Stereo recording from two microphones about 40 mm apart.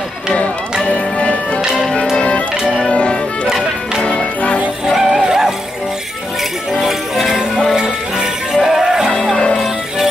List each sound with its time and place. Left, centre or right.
0.8 s music: left
4.8 s music: centre
6.7 s music: centre
7.7 s music: centre